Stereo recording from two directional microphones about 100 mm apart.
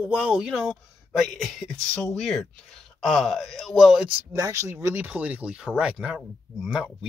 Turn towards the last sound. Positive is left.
turn(degrees=-5)  # may be behind; listen again after turning